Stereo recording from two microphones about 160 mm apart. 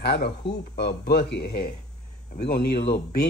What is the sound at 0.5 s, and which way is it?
Speech, 90° left.